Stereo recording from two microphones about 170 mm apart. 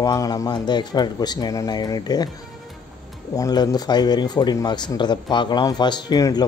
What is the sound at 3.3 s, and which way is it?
Speech, 20° left (ahead or behind).